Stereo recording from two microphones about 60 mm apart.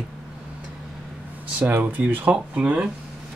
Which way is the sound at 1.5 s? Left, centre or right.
Right.